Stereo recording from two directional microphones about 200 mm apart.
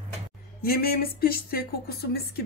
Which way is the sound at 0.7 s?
50° left (ahead or behind).